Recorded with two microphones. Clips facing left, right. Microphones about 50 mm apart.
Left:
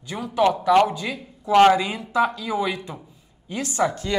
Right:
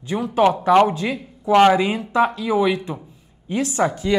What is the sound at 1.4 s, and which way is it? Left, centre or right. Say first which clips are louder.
Speech: right 1 dB; centre.